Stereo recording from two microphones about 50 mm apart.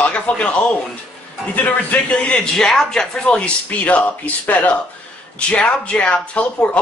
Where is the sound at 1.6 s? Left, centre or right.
Left.